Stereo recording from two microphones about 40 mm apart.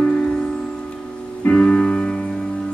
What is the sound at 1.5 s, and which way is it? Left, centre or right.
Music, left.